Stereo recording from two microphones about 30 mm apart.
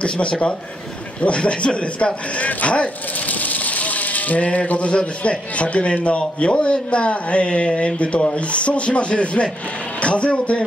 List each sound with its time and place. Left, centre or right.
0.0 s speech: left
3.3 s speech: left
9.9 s a sound: left